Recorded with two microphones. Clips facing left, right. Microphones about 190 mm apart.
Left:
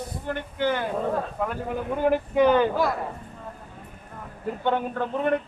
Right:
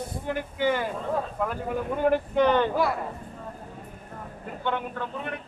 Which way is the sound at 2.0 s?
5° left (ahead or behind).